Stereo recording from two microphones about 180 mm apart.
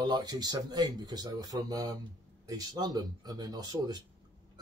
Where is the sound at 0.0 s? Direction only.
25° right (ahead or behind).